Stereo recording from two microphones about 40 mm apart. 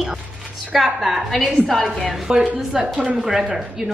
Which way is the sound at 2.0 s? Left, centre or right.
Centre.